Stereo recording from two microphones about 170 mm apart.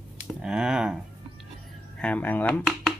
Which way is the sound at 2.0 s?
10° left (ahead or behind).